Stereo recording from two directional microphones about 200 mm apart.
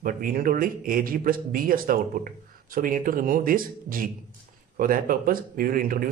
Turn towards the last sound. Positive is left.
turn(degrees=-45)  # may be behind; listen again after turning